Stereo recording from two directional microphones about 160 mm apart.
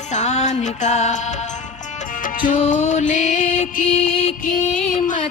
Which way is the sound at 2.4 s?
55° left (ahead or behind).